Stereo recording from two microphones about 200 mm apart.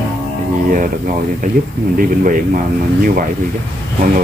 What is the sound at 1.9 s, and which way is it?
Speech, 45° right (ahead or behind).